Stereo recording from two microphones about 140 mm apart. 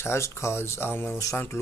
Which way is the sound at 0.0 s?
20° left (ahead or behind).